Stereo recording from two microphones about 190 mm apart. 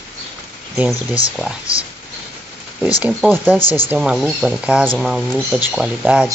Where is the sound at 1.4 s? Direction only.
5° right (ahead or behind).